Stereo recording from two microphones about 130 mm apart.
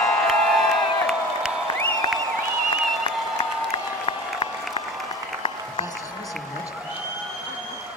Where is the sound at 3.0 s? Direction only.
45° left (ahead or behind).